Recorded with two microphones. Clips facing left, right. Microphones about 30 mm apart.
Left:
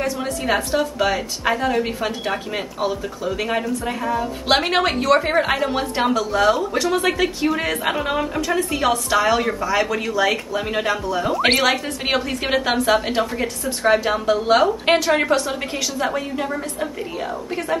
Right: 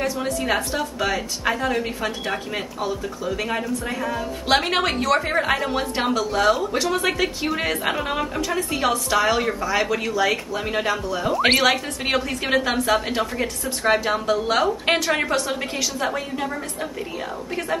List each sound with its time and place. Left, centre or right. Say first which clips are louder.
0.0 s a woman's voice: left 1 dB; centre
14.3 s speech: left 6 dB; centre
14.6 s a woman's voice: left 3 dB; centre